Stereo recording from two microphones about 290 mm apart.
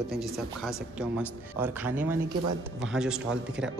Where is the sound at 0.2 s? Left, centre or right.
Centre.